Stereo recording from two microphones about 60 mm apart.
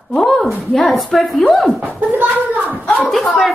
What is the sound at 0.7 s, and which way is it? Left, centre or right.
Speech, centre.